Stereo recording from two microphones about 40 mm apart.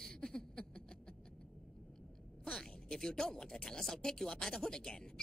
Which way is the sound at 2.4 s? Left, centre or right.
Centre.